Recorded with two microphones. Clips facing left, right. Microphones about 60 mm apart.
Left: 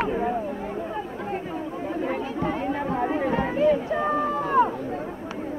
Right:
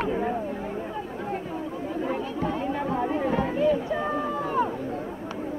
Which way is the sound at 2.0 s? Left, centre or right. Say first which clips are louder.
Left 1 dB; left.